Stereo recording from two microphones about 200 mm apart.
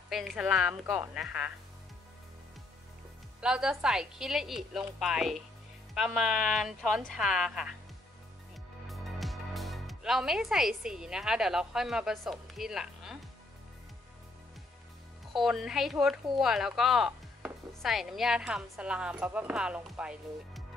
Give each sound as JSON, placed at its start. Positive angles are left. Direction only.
{"t": 0.1, "sound": "speech", "side_deg": 0}
{"t": 3.3, "sound": "speech", "side_deg": -5}
{"t": 8.8, "sound": "speech", "side_deg": 0}
{"t": 15.3, "sound": "speech", "side_deg": 0}